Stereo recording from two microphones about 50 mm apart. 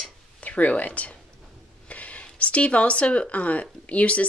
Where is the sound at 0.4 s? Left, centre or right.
Left.